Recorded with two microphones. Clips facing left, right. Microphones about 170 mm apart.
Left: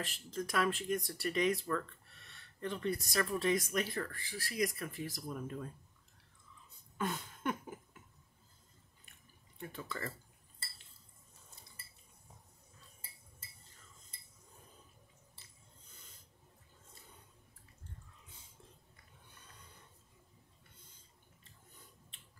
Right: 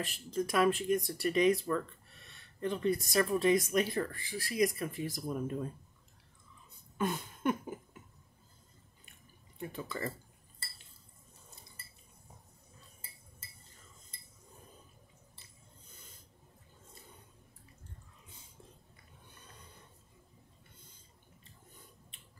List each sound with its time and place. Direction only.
0.0 s speech: 15° right (ahead or behind)
7.0 s a sound: 15° right (ahead or behind)
9.6 s speech: 15° right (ahead or behind)